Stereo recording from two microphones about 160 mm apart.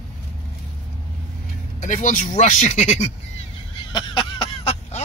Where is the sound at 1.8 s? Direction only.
55° left (ahead or behind).